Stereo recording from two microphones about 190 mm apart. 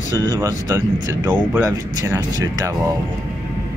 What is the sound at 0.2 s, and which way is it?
Speech, 20° right (ahead or behind).